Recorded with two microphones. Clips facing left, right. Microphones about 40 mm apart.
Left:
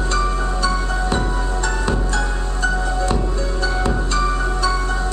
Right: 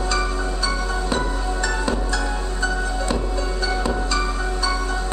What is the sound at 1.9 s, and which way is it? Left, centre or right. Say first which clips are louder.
Music: left 2 dB; left.